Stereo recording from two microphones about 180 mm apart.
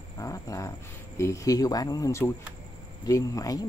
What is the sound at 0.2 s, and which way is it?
Speech, 20° left (ahead or behind).